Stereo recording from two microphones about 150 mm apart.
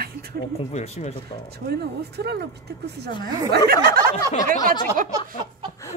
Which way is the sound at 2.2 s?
90° right.